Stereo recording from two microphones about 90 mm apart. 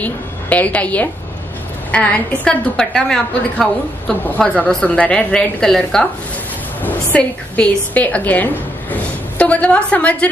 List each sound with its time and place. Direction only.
0.0 s a woman's voice: 15° left (ahead or behind)
6.8 s a woman's voice: 15° left (ahead or behind)
8.9 s a sound: 15° left (ahead or behind)